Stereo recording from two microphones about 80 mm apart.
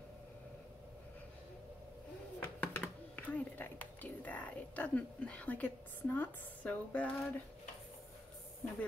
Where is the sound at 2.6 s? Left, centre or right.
Centre.